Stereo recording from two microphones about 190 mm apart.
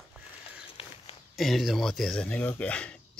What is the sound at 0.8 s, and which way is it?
Walk, 30° left (ahead or behind).